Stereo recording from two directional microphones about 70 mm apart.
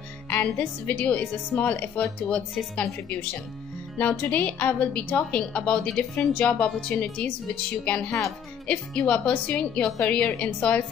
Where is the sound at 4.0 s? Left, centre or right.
Left.